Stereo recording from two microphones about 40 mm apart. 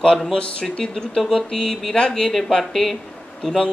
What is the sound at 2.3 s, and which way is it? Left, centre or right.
Speech, centre.